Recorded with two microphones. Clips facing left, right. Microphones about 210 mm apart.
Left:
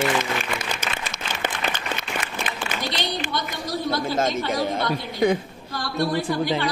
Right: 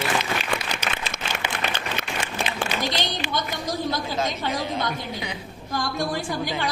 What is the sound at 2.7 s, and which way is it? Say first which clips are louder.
Speech: right 1 dB; 50° left (ahead or behind).